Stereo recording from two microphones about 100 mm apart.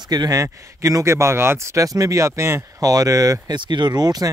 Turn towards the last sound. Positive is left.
turn(degrees=-40)  # may be behind; listen again after turning